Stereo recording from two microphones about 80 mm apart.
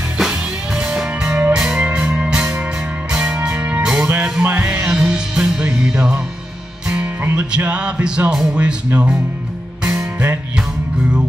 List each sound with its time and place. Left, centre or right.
0.2 s music: centre
4.1 s music: centre
7.3 s music: centre
8.3 s speech: centre
9.8 s music: right